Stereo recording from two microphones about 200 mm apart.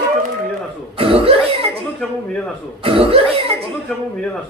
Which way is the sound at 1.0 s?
30° right (ahead or behind).